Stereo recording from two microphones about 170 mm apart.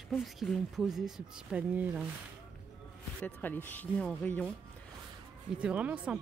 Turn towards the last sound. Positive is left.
turn(degrees=-5)  # may be behind; listen again after turning